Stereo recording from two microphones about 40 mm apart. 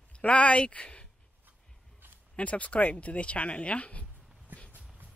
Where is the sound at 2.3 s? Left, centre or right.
Left.